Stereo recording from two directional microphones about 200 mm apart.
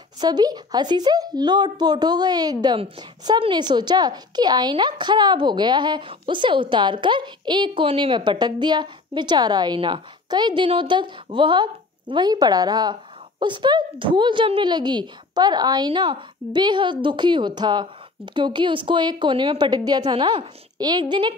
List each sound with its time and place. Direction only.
0.2 s a woman's voice: 20° right (ahead or behind)